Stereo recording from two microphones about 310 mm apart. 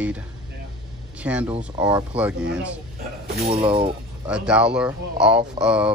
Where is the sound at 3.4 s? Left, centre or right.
Centre.